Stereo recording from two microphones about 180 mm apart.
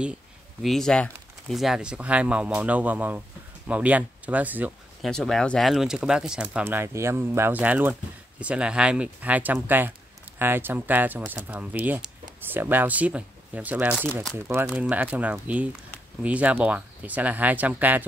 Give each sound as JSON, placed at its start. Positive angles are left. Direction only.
{"t": 0.6, "sound": "speech", "side_deg": 0}
{"t": 5.1, "sound": "speech", "side_deg": 5}